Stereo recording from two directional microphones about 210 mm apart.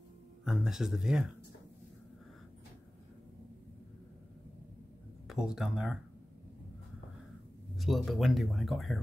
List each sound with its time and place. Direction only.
0.5 s speech: centre (ahead or behind)
5.3 s speech: 5° right (ahead or behind)
7.7 s speech: centre (ahead or behind)